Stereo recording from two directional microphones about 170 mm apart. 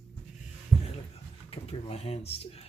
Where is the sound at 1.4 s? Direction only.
35° left (ahead or behind).